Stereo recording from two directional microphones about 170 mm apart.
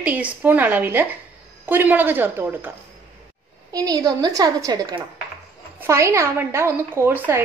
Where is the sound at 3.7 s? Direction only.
20° right (ahead or behind).